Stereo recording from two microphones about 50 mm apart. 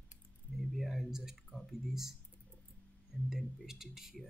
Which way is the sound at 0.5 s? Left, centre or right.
Centre.